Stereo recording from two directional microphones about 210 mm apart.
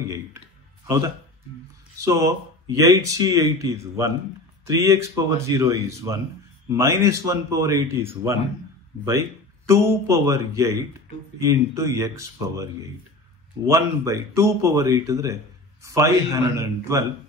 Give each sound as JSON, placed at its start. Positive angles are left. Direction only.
{"t": 0.8, "sound": "speech", "side_deg": -15}
{"t": 10.0, "sound": "speech", "side_deg": -15}
{"t": 13.7, "sound": "speech", "side_deg": -15}